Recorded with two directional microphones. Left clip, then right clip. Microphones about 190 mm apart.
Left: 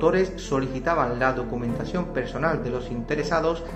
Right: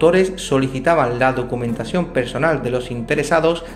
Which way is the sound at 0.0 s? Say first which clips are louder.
Right 7 dB; 40° right (ahead or behind).